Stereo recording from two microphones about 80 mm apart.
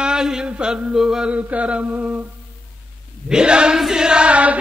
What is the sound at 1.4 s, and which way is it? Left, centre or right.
Chant, centre.